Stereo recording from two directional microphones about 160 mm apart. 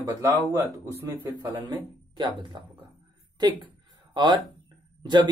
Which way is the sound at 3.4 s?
25° right (ahead or behind).